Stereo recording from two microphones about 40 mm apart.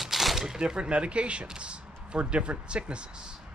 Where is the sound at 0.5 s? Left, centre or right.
Centre.